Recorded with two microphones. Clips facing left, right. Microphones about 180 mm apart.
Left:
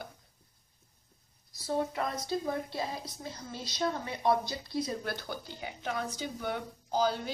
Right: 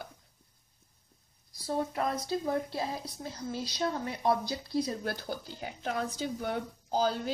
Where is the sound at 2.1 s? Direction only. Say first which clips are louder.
Right 2 dB; 5° right (ahead or behind).